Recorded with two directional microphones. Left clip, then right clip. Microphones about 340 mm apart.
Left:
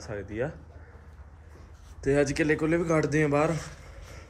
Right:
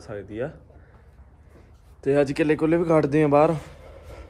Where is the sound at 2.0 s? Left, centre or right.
Centre.